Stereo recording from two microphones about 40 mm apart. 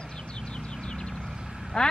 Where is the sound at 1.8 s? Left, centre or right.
Left.